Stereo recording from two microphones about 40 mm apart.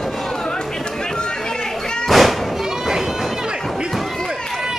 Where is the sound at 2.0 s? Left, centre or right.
Centre.